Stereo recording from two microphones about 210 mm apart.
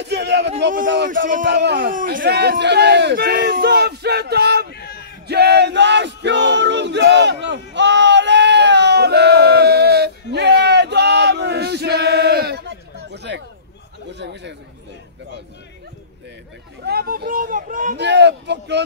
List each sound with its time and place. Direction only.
0.0 s a man's voice: 55° right (ahead or behind)
1.1 s speech: 40° right (ahead or behind)
1.5 s speech: 55° right (ahead or behind)
4.7 s a sound: 50° left (ahead or behind)
5.3 s male singing: 50° right (ahead or behind)
14.1 s chatter: 55° right (ahead or behind)
16.8 s speech: 45° right (ahead or behind)
18.0 s a man's voice: 55° right (ahead or behind)